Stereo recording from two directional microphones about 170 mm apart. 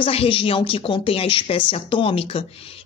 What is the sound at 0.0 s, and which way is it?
A woman's voice, 35° left (ahead or behind).